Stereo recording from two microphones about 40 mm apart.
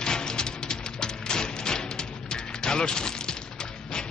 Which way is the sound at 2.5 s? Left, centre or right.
Centre.